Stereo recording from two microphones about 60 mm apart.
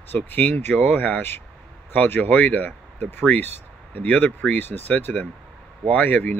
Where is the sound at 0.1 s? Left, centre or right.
Left.